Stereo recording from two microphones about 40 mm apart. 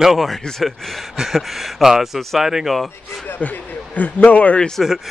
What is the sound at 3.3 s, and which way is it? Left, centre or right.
Speech, left.